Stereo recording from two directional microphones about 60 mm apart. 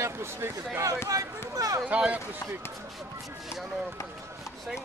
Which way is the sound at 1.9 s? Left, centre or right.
Centre.